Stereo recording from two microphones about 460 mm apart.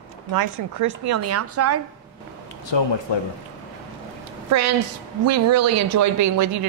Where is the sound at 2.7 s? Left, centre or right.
Left.